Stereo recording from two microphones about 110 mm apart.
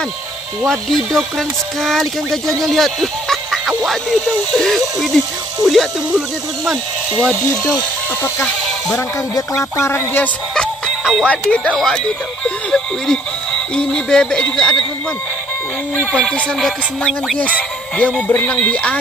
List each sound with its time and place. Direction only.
0.7 s speech: 5° left (ahead or behind)
8.9 s speech: 30° left (ahead or behind)
10.5 s music: 5° left (ahead or behind)
11.2 s speech: 10° left (ahead or behind)
16.0 s speech: 10° left (ahead or behind)